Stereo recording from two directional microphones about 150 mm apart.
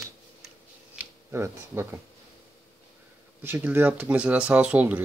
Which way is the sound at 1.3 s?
15° right (ahead or behind).